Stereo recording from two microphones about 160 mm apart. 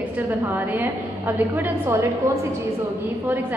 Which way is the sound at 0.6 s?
10° right (ahead or behind).